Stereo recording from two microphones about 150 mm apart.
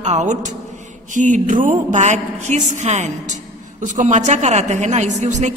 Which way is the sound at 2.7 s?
50° right (ahead or behind).